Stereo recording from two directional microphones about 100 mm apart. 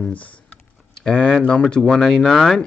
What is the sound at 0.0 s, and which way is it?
Speech, 15° left (ahead or behind).